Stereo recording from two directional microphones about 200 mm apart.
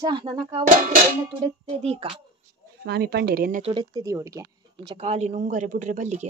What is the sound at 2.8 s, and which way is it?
Speech, 55° right (ahead or behind).